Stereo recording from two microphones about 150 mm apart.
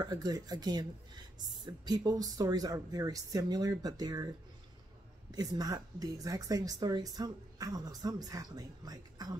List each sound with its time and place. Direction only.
0.0 s speech: 25° right (ahead or behind)
5.3 s speech: 25° right (ahead or behind)